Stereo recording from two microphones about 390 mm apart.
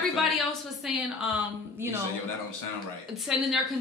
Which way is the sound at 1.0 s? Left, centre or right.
Centre.